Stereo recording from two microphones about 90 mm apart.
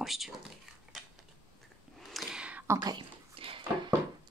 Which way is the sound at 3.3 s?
80° right.